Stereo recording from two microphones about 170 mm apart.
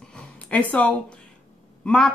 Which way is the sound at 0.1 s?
10° left (ahead or behind).